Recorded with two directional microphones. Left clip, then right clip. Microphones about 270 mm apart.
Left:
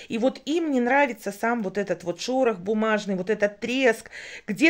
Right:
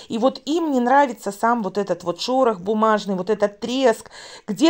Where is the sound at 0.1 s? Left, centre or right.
Centre.